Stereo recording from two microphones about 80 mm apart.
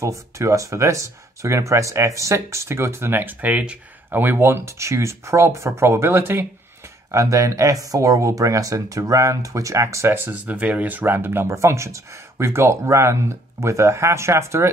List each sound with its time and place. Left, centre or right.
0.0 s speech: right
7.1 s speech: right